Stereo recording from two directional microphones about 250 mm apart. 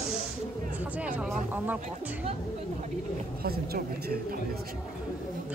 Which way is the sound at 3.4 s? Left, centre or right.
Right.